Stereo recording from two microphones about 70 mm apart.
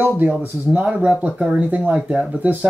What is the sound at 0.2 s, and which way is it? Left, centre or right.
Speech, right.